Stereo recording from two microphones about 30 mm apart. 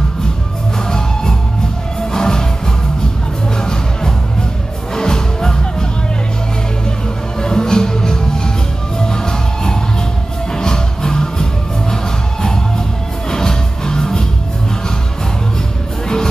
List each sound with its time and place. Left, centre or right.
0.8 s music: left
4.9 s music: left
7.4 s music: left